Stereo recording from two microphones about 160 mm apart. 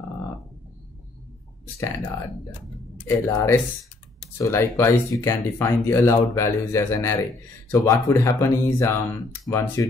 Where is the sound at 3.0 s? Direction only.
15° left (ahead or behind).